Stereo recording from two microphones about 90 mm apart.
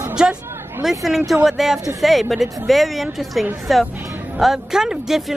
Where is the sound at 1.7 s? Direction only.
35° right (ahead or behind).